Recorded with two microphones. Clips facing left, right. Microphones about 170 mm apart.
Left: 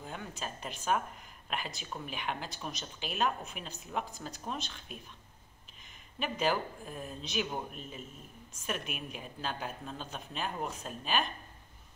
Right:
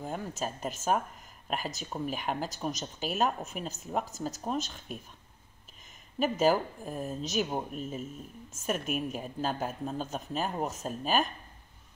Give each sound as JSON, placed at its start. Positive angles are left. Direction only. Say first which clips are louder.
{"t": 0.0, "sound": "speech", "louder": "right 6 dB", "side_deg": -45}
{"t": 6.1, "sound": "speech", "louder": "right 6 dB", "side_deg": -45}